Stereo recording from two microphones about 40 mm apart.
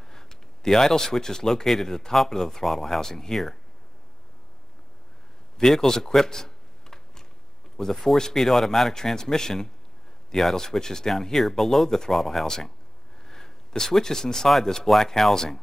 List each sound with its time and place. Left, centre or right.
0.0 s speech: centre
5.6 s computer keyboard: centre
7.9 s speech: centre
8.9 s speech: centre